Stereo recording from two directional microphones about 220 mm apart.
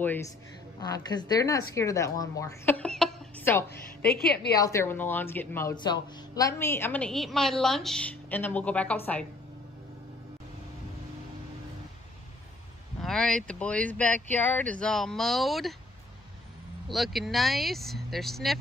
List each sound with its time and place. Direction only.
0.7 s speech: 15° left (ahead or behind)
4.1 s a woman's voice: 45° left (ahead or behind)
4.6 s speech: 15° left (ahead or behind)
13.0 s speech: 5° left (ahead or behind)
16.8 s speech: centre (ahead or behind)